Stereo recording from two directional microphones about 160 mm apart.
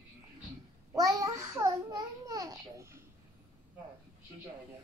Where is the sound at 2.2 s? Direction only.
20° right (ahead or behind).